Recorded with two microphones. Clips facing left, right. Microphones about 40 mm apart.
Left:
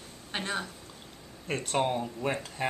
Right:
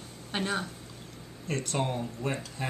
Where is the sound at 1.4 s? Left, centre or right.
Left.